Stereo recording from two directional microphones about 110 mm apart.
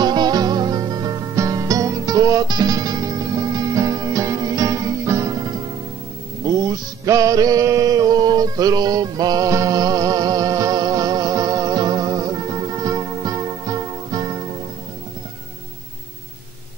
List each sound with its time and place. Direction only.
0.0 s music: 40° right (ahead or behind)